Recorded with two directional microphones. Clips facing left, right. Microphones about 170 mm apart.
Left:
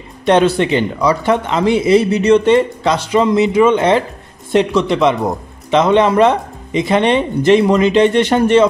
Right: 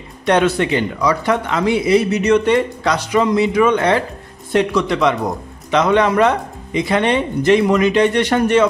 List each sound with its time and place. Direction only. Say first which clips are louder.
0.2 s speech: left 3 dB; 30° left (ahead or behind)